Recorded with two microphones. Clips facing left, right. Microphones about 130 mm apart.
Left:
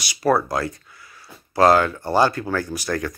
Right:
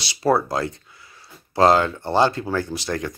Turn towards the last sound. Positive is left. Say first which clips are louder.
# left 1 dB
turn(degrees=-20)  # may be behind; listen again after turning